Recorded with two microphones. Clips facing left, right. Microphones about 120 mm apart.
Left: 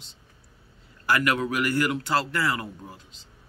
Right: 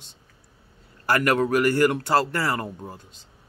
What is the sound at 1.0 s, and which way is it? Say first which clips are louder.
Speech: right 3 dB; 45° right (ahead or behind).